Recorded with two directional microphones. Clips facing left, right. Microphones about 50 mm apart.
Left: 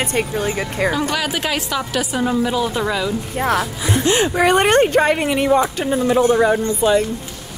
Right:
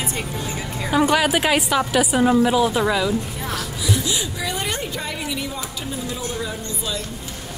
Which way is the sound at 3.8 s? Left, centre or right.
Left.